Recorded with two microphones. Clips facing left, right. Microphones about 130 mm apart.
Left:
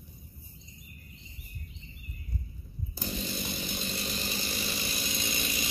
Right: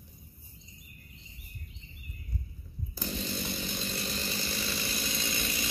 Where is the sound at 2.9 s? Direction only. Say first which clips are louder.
Even; 15° left (ahead or behind).